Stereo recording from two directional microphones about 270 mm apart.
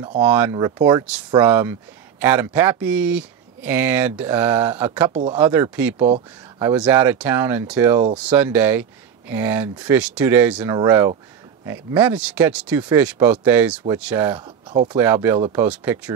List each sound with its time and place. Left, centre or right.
0.2 s speech: centre
5.1 s speech: right
5.4 s speech: centre
5.9 s speech: right
6.6 s speech: centre
14.7 s speech: centre